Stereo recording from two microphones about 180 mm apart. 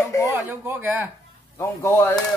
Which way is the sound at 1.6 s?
15° left (ahead or behind).